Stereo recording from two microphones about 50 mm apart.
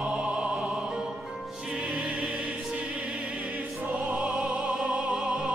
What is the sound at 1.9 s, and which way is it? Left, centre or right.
Music, right.